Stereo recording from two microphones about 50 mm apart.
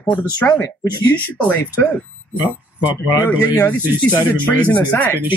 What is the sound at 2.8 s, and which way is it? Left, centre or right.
Speech, right.